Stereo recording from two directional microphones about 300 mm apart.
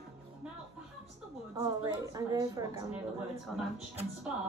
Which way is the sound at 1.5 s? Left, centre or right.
Centre.